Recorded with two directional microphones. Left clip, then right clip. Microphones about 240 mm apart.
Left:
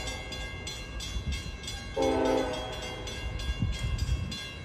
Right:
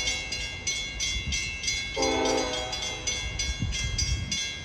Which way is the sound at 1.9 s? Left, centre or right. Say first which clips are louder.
Left 1 dB; centre.